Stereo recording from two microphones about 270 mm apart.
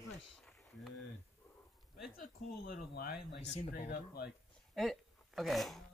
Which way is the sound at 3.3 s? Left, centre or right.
Left.